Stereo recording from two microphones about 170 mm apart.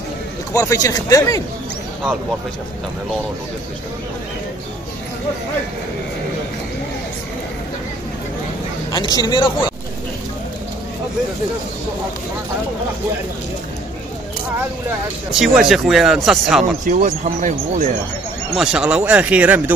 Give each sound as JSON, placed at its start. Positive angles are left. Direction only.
{"t": 0.5, "sound": "speech", "side_deg": 20}
{"t": 9.1, "sound": "speech", "side_deg": 25}
{"t": 15.3, "sound": "speech", "side_deg": 0}
{"t": 16.8, "sound": "speech", "side_deg": -45}
{"t": 18.6, "sound": "speech", "side_deg": -5}